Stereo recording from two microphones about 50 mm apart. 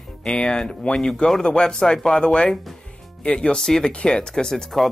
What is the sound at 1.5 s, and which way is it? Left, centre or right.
Speech, centre.